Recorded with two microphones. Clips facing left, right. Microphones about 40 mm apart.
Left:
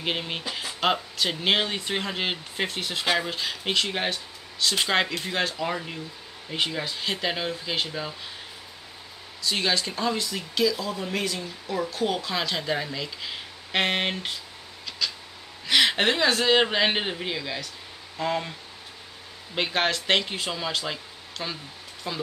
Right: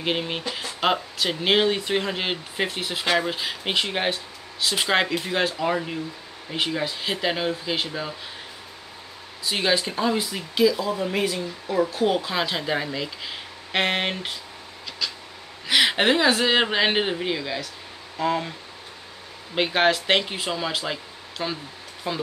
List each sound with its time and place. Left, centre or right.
0.0 s speech: centre
9.4 s speech: centre
15.0 s a sound: centre
15.6 s speech: centre
19.5 s speech: centre